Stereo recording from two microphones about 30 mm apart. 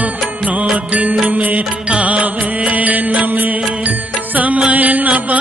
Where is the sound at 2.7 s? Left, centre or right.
Right.